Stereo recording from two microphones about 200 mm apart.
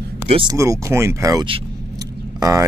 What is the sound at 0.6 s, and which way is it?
Speech, 15° right (ahead or behind).